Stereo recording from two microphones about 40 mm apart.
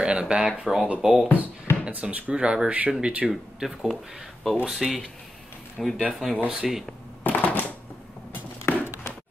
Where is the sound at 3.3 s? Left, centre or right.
Centre.